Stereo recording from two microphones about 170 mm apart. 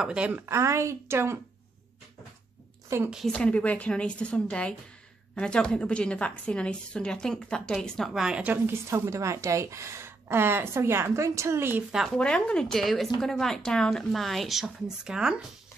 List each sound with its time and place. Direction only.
0.0 s speech: 5° right (ahead or behind)
3.1 s a woman's voice: centre (ahead or behind)